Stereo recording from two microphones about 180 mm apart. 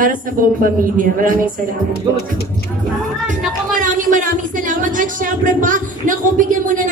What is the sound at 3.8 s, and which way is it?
Speech, 50° right (ahead or behind).